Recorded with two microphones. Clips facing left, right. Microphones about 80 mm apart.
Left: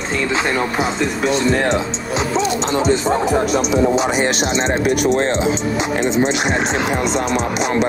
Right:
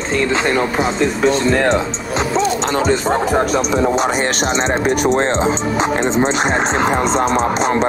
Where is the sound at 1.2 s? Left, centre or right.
Right.